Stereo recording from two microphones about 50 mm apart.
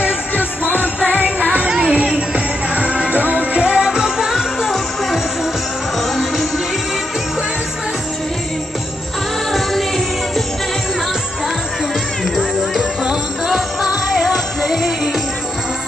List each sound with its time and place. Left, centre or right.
0.4 s music: left
1.2 s music: right; by 5.2 s centre
9.5 s music: centre
12.4 s music: centre